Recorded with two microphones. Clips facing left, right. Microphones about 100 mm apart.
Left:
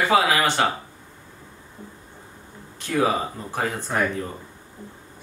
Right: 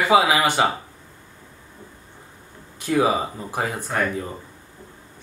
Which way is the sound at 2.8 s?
10° right (ahead or behind).